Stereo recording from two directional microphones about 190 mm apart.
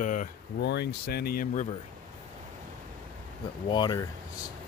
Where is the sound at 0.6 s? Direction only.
60° left (ahead or behind); by 1.7 s 45° left (ahead or behind).